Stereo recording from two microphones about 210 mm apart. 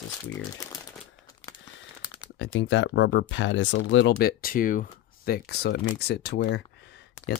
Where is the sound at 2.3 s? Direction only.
60° left (ahead or behind).